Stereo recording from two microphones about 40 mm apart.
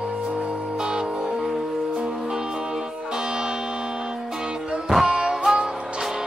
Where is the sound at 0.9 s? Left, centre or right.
Centre.